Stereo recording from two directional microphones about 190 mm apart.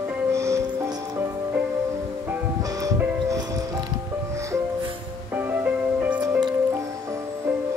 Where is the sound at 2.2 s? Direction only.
15° right (ahead or behind).